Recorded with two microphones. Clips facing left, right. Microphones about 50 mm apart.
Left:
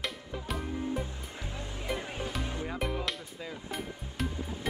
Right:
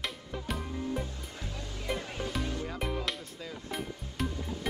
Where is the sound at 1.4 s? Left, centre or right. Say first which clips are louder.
Left 2 dB; left.